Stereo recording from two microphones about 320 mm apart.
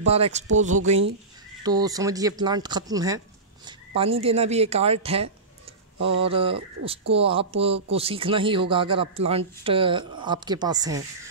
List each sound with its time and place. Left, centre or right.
0.0 s speech: centre
1.6 s speech: centre
5.9 s speech: right
6.2 s speech: centre